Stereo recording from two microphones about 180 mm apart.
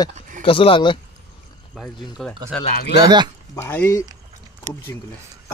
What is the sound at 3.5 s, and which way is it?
Speech, 15° left (ahead or behind).